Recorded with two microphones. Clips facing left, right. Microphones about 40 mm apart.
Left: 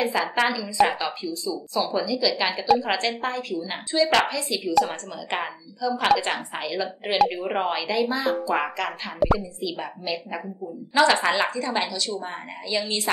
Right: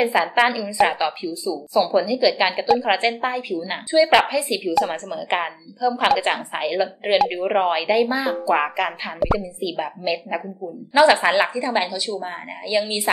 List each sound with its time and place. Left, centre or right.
0.0 s a woman's voice: centre
7.2 s speech: centre
7.4 s a woman's voice: centre
9.2 s speech: centre
9.6 s a woman's voice: centre